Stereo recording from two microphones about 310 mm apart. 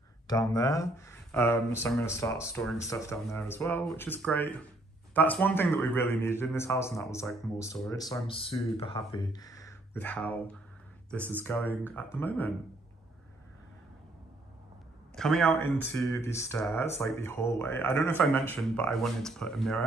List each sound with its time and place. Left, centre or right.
0.3 s a man's voice: centre
15.1 s a man's voice: centre